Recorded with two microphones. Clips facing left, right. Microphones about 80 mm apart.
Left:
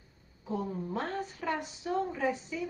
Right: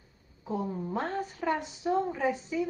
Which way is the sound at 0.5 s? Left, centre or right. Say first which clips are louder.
Right 2 dB; centre.